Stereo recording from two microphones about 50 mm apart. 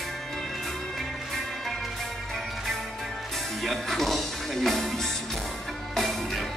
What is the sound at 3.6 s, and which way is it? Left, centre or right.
Music, centre.